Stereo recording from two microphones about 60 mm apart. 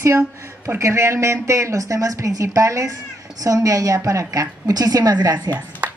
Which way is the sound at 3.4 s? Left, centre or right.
Right.